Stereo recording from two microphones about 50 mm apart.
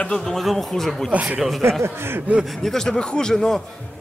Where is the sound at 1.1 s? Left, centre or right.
Right.